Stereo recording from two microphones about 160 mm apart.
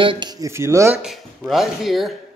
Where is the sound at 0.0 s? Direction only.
30° right (ahead or behind).